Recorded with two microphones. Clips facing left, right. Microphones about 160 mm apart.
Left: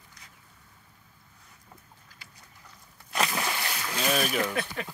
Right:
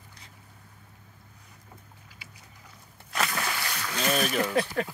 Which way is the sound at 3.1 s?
20° left (ahead or behind).